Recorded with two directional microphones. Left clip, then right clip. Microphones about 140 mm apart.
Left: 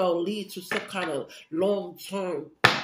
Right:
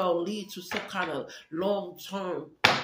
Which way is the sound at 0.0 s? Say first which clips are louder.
Left 2 dB; 15° left (ahead or behind).